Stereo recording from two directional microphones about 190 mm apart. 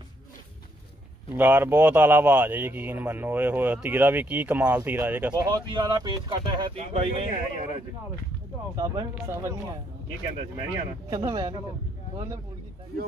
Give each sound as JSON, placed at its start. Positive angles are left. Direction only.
{"t": 1.3, "sound": "speech", "side_deg": -10}
{"t": 5.5, "sound": "speech", "side_deg": -25}
{"t": 8.7, "sound": "speech", "side_deg": -20}
{"t": 11.1, "sound": "speech", "side_deg": -20}